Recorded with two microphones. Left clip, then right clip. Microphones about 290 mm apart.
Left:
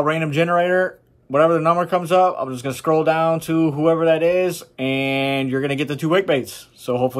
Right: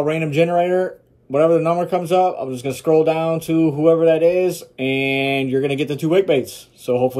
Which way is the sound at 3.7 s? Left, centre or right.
Centre.